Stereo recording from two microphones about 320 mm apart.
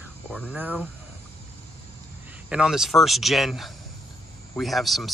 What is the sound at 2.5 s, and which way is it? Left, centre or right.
Speech, centre.